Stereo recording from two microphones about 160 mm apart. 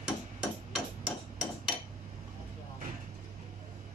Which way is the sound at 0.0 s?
5° right (ahead or behind).